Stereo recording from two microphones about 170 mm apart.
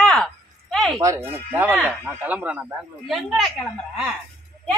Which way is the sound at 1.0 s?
15° right (ahead or behind).